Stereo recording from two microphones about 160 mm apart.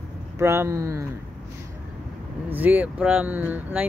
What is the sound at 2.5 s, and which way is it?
Speech, 10° right (ahead or behind).